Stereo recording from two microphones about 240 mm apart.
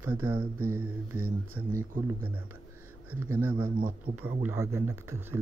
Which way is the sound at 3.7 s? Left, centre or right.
Right.